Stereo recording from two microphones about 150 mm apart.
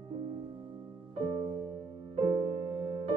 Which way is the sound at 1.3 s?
30° right (ahead or behind).